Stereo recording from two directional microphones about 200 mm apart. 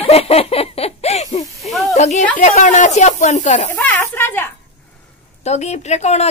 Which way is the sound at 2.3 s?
35° left (ahead or behind).